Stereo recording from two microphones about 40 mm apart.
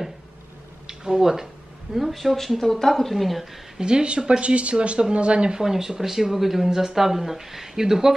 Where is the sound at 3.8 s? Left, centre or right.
Right.